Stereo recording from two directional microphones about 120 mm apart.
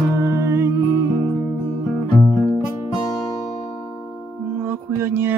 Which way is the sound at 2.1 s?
25° left (ahead or behind).